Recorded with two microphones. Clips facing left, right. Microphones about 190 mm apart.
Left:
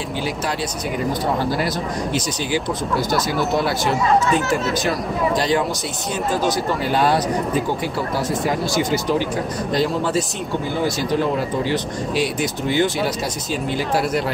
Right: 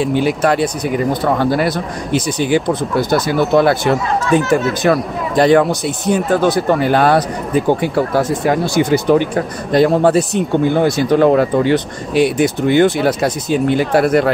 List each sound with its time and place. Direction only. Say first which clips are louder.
0.1 s speech: right 10 dB; 60° right (ahead or behind)